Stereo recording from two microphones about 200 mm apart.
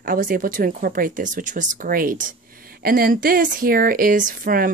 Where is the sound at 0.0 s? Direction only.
45° right (ahead or behind).